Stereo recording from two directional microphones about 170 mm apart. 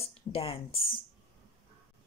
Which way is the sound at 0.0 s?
35° left (ahead or behind).